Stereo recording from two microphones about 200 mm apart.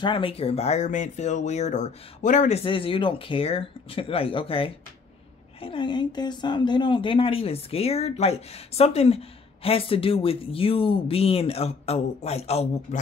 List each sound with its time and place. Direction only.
0.0 s speech: 25° left (ahead or behind)